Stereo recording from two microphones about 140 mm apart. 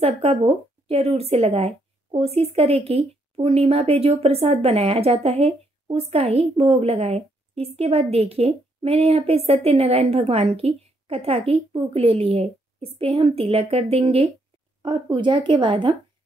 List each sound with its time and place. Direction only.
0.0 s a woman's voice: 50° right (ahead or behind)